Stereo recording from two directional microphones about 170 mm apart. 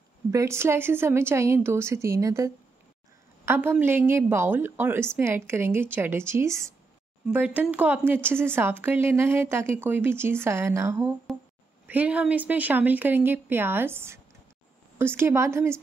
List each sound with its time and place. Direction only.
0.3 s speech: 15° right (ahead or behind)
11.3 s speech: centre (ahead or behind)
11.9 s speech: 10° right (ahead or behind)